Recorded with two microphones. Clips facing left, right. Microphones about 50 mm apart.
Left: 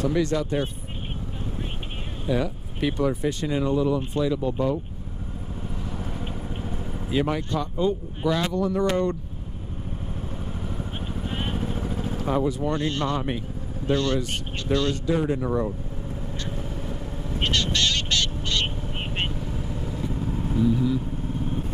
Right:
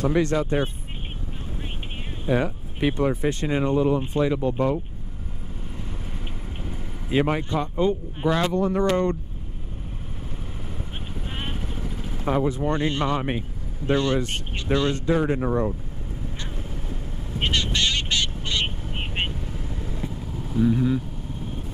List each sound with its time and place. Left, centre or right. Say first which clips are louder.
0.0 s speech: right 2 dB; right
2.2 s speech: right 2 dB; right
7.1 s speech: right 2 dB; right
8.5 s speech: right 2 dB; right
11.5 s vehicle: left 5 dB; left
12.4 s speech: right 1 dB; right
12.7 s speech: right 2 dB; right
17.4 s speech: even; centre
19.4 s vehicle: left 3 dB; left
20.6 s vehicle: right 2 dB; right